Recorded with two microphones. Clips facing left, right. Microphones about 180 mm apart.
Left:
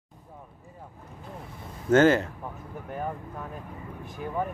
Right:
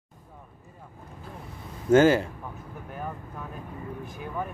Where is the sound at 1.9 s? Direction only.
10° right (ahead or behind).